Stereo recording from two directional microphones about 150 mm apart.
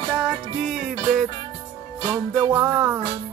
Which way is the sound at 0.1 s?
Centre (ahead or behind).